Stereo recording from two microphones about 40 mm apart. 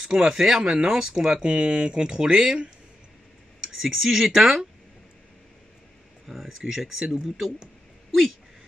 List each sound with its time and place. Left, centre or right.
0.0 s speech: centre
3.6 s speech: centre
6.2 s speech: centre
7.6 s a sound: centre